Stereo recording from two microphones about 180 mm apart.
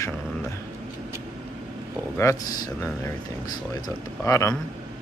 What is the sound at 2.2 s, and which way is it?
Speech, 20° left (ahead or behind).